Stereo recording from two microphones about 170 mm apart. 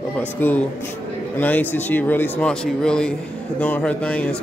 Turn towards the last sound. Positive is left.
turn(degrees=5)  # may be behind; listen again after turning